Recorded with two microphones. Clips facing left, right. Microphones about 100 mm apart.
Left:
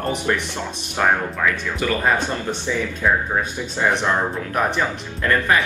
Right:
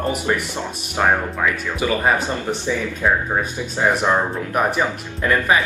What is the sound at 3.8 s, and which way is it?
Speech, 15° right (ahead or behind).